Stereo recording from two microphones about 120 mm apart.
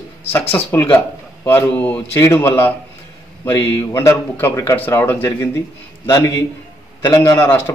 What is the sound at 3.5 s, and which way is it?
A man's voice, 20° left (ahead or behind).